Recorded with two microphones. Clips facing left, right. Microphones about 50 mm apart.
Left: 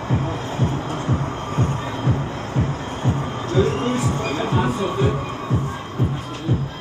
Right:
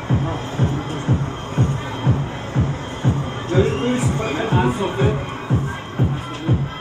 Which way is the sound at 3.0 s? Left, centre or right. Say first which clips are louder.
Right 2 dB; left.